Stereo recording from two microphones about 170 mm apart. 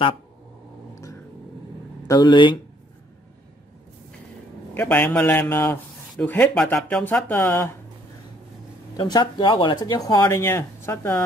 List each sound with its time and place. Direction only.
2.0 s speech: 25° left (ahead or behind)
4.7 s speech: 10° left (ahead or behind)
8.9 s speech: 25° left (ahead or behind)